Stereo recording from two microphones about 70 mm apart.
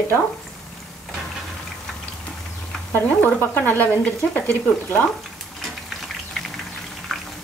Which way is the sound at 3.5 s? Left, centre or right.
Left.